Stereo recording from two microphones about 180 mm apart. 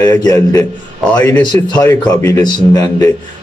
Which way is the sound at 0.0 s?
20° left (ahead or behind).